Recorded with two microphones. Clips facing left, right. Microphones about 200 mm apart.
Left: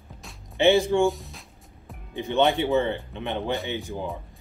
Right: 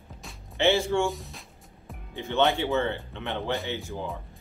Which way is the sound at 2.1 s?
15° left (ahead or behind).